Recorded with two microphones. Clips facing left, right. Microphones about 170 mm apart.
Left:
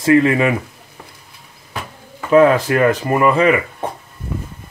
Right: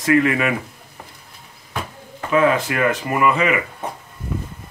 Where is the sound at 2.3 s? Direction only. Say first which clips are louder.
Left 6 dB; 40° left (ahead or behind).